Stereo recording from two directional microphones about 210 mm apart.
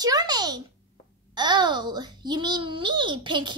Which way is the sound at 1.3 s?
20° right (ahead or behind).